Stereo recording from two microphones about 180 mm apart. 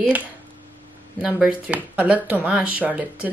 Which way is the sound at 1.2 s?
5° right (ahead or behind).